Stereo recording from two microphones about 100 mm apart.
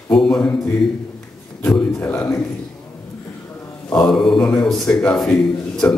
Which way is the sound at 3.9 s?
5° left (ahead or behind).